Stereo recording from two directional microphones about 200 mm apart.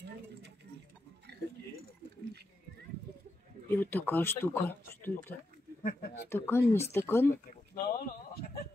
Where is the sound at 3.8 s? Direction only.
10° left (ahead or behind).